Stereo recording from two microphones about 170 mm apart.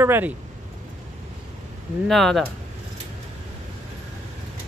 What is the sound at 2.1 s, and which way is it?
Speech, centre (ahead or behind).